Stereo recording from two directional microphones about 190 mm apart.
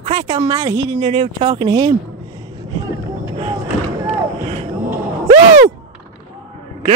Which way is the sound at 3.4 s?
35° right (ahead or behind).